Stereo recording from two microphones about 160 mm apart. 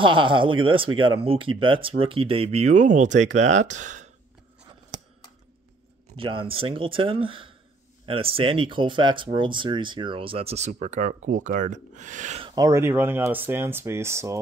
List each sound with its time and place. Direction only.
0.0 s speech: 30° right (ahead or behind); by 4.1 s 50° right (ahead or behind)
6.1 s speech: 35° right (ahead or behind); by 12.4 s 50° right (ahead or behind)
12.4 s speech: 20° right (ahead or behind)